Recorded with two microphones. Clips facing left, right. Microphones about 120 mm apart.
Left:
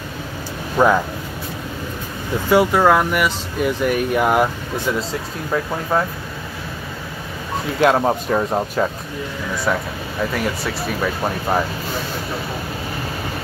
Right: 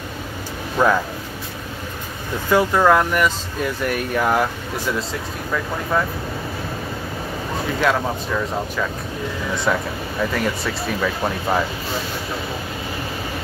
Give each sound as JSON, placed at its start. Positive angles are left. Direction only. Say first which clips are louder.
{"t": 0.7, "sound": "speech", "louder": "left 2 dB", "side_deg": 15}
{"t": 2.5, "sound": "speech", "louder": "left 1 dB", "side_deg": 15}
{"t": 7.8, "sound": "speech", "louder": "left 6 dB", "side_deg": 35}
{"t": 9.7, "sound": "speech", "louder": "even", "side_deg": 0}